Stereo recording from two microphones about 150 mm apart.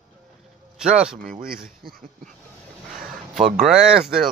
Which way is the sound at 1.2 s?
65° right (ahead or behind).